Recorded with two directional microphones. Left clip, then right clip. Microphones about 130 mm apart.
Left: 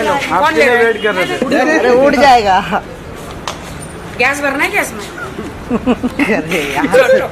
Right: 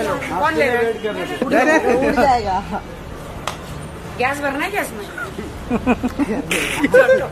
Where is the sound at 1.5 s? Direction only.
40° right (ahead or behind).